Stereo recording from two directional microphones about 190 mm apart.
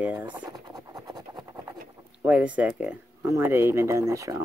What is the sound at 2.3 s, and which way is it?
Speech, 5° right (ahead or behind).